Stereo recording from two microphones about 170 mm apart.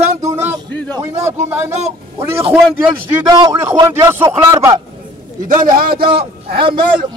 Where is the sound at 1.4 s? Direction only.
15° right (ahead or behind).